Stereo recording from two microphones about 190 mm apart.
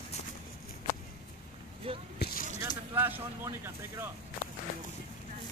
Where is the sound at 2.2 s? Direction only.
50° left (ahead or behind).